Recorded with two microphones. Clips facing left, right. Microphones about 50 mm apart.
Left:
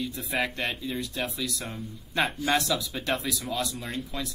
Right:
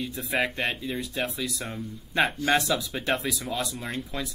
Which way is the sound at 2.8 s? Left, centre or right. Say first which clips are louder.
Right 2 dB; centre.